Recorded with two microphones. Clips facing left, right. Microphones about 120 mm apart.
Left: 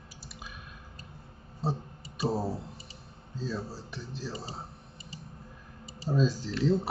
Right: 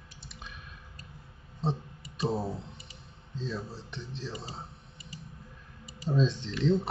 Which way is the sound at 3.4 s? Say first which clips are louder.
Left 1 dB; 5° left (ahead or behind).